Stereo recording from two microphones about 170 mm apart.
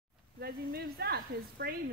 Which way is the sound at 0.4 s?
65° right (ahead or behind).